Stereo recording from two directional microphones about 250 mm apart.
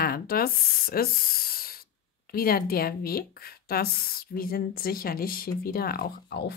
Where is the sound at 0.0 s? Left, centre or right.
Left.